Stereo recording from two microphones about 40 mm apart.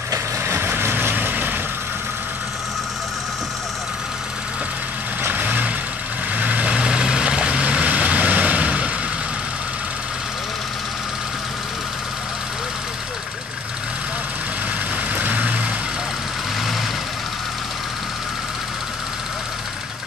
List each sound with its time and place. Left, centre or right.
0.5 s vehicle: right
5.3 s vehicle: right
6.7 s vehicle: right
15.1 s vehicle: right